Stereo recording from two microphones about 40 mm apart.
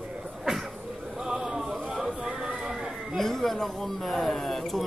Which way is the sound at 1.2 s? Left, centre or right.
Centre.